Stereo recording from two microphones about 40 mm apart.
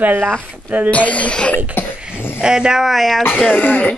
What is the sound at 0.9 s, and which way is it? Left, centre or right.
Speech, left.